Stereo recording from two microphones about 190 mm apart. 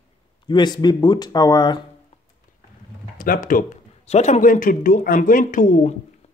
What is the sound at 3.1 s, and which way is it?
Speech, 45° left (ahead or behind).